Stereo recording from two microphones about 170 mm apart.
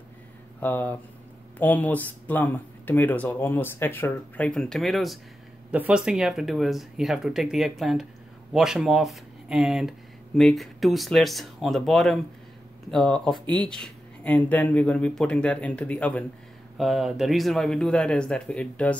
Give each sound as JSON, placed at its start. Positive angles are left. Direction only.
{"t": 0.6, "sound": "speech", "side_deg": 10}
{"t": 13.3, "sound": "speech", "side_deg": -25}
{"t": 13.7, "sound": "speech", "side_deg": 5}